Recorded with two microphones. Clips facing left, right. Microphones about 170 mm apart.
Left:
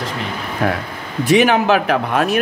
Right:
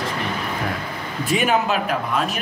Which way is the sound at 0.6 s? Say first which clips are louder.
Left 11 dB; 70° left (ahead or behind).